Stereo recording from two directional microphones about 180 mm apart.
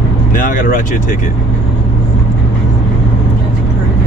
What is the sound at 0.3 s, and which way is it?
Speech, 45° left (ahead or behind).